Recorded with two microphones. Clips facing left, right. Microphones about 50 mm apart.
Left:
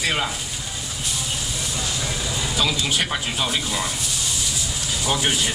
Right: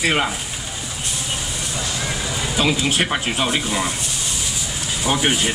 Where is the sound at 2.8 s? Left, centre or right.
Right.